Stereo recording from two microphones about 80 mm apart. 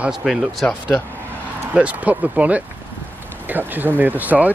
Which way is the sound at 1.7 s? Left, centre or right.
Centre.